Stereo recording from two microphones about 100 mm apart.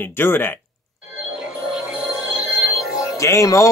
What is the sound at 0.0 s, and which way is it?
Speech, 20° left (ahead or behind).